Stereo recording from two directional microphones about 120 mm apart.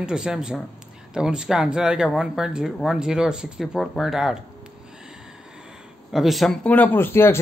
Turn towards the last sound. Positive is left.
turn(degrees=20)  # may be behind; listen again after turning